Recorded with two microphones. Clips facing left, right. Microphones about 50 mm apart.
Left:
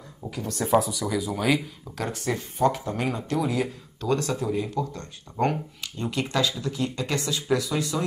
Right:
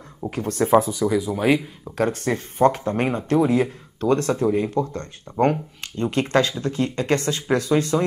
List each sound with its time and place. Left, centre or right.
0.3 s speech: right
2.0 s speech: right